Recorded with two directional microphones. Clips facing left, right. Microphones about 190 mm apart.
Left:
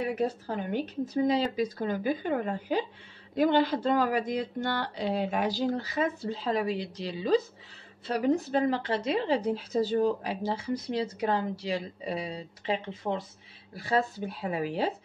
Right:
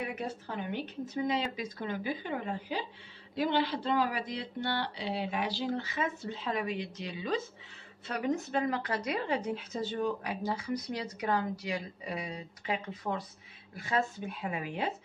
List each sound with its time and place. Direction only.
0.0 s a woman's voice: 40° left (ahead or behind)